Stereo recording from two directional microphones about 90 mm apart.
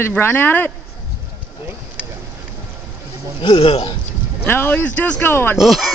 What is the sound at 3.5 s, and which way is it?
Speech, 90° left.